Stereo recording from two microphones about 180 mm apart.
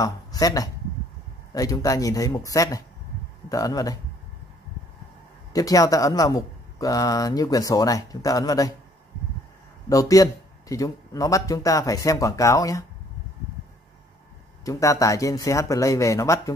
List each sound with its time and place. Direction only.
0.0 s speech: 20° left (ahead or behind)
5.5 s speech: 20° left (ahead or behind)
9.8 s speech: 20° left (ahead or behind)
14.6 s a man's voice: 20° left (ahead or behind)